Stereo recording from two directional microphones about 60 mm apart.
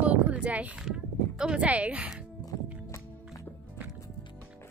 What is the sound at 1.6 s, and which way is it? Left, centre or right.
Speech, right.